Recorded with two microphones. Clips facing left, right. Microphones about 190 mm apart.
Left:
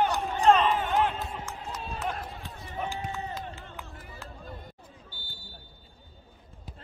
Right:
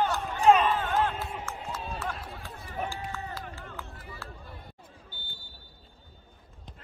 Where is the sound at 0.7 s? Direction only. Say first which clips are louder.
Left 1 dB; 15° left (ahead or behind).